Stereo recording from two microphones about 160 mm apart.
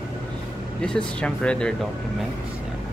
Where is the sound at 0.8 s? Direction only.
5° left (ahead or behind).